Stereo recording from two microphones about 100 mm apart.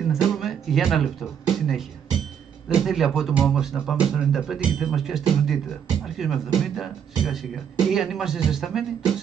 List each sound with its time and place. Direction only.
0.1 s music: centre (ahead or behind)
2.7 s speech: centre (ahead or behind)